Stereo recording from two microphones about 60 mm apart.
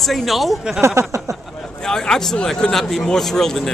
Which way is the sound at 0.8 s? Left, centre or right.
Right.